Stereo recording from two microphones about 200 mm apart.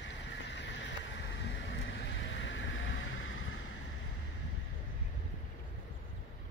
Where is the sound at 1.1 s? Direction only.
65° left (ahead or behind); by 3.5 s 85° left.